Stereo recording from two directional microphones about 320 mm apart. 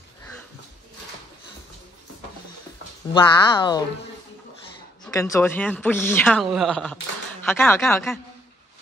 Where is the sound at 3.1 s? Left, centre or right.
Centre.